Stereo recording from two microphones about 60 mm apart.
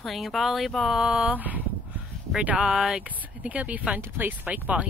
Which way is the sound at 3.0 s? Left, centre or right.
Right.